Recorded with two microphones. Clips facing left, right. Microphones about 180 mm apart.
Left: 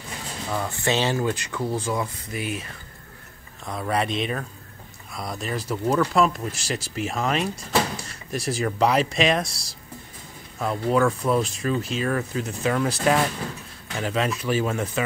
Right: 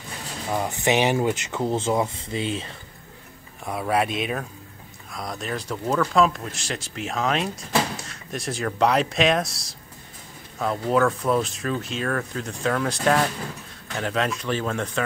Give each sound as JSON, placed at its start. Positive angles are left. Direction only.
{"t": 0.5, "sound": "speech", "side_deg": -20}
{"t": 3.6, "sound": "speech", "side_deg": -5}